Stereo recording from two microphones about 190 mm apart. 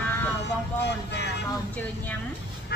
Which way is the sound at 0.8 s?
65° left (ahead or behind).